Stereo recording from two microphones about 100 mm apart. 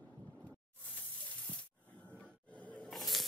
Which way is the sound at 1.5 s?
15° left (ahead or behind).